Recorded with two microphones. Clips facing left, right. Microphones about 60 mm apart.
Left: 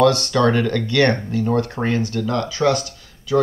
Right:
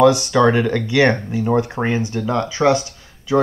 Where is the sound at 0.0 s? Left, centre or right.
Centre.